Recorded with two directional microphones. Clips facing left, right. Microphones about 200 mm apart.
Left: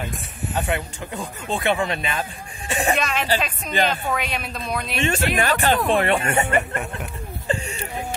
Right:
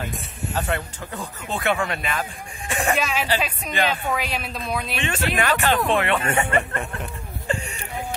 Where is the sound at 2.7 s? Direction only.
20° left (ahead or behind).